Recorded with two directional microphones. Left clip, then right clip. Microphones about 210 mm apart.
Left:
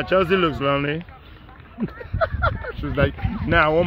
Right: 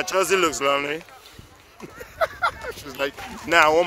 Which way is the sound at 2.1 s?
15° right (ahead or behind).